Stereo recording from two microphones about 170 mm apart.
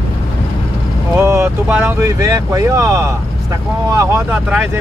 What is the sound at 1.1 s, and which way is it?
Speech, 15° right (ahead or behind).